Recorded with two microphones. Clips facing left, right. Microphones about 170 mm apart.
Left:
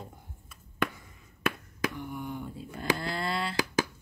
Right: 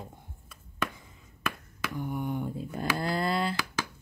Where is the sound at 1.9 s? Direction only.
50° right (ahead or behind).